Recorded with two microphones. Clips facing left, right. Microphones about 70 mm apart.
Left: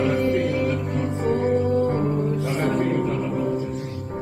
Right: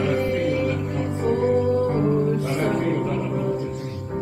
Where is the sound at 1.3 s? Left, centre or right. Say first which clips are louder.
Right 1 dB; left.